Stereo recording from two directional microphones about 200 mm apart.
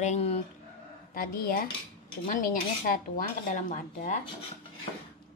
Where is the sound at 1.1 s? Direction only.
45° left (ahead or behind).